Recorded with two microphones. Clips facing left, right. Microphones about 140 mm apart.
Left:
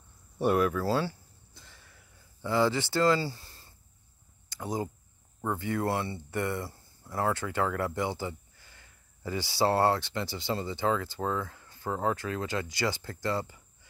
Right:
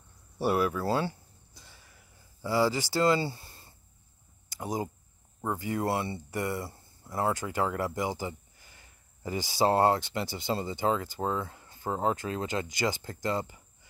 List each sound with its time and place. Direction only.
0.4 s speech: 5° right (ahead or behind)
2.4 s speech: 10° right (ahead or behind)
3.0 s speech: 20° right (ahead or behind)
7.1 s speech: 25° right (ahead or behind)